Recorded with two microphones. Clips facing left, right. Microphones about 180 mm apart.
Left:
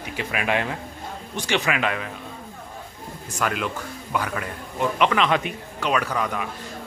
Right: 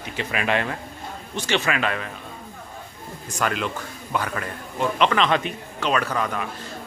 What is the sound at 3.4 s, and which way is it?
A man's voice, 5° left (ahead or behind).